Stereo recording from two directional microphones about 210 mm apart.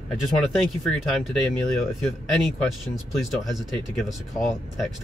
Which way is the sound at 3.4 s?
Centre (ahead or behind).